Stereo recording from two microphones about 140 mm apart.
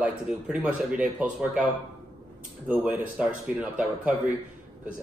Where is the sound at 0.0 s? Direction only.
10° right (ahead or behind).